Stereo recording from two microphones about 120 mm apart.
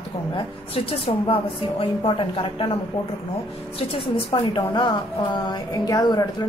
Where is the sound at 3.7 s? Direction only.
50° left (ahead or behind).